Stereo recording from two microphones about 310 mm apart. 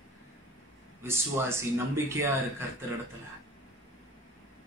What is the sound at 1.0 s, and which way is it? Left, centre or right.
Speech, centre.